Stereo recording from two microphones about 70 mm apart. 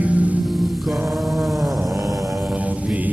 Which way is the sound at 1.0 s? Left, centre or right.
Centre.